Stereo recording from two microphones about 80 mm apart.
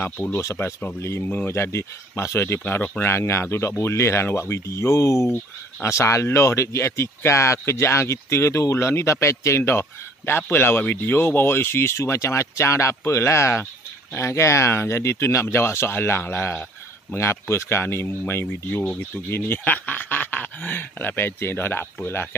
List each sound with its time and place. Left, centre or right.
0.0 s speech: left
0.6 s speech: left
1.5 s speech: left
2.6 s speech: left
3.1 s speech: left